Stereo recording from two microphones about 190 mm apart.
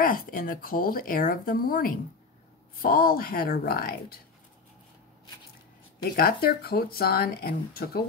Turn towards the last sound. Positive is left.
turn(degrees=55)  # may be behind; listen again after turning